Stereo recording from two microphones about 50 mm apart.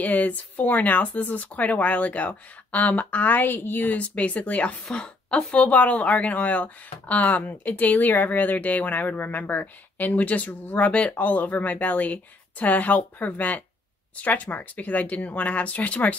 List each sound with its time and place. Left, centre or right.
0.0 s speech: left